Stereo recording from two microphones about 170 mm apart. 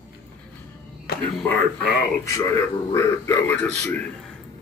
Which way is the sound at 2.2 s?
15° left (ahead or behind).